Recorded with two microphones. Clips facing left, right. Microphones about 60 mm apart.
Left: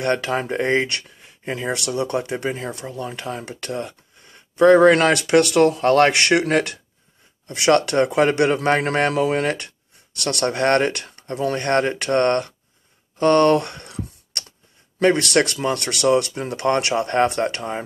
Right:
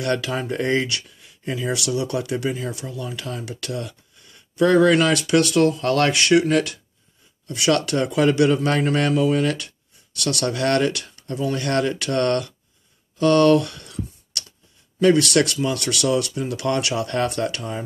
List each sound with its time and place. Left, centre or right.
0.0 s speech: left
4.9 s speech: left
5.8 s speech: left
6.1 s speech: left
8.8 s speech: left
15.0 s speech: left